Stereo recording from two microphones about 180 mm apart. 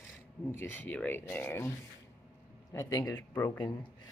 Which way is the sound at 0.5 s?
10° left (ahead or behind).